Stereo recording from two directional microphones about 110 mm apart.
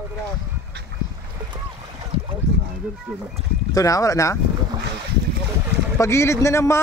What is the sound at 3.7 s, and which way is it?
Speech, 30° left (ahead or behind).